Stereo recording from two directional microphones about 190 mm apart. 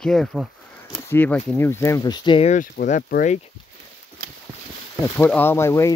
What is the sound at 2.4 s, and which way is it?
Speech, 40° left (ahead or behind).